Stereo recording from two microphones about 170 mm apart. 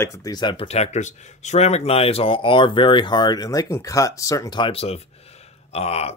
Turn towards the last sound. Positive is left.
turn(degrees=40)  # may be behind; listen again after turning